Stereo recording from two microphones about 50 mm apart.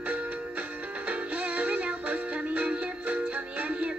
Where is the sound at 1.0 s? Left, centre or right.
Right.